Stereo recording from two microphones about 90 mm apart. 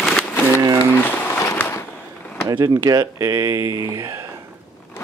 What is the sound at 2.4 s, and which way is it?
Speech, 45° right (ahead or behind).